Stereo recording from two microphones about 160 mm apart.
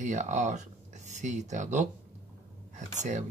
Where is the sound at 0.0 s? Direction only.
50° right (ahead or behind).